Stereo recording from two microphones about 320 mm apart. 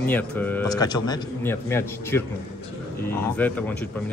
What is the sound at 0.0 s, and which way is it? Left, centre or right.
Speech, centre.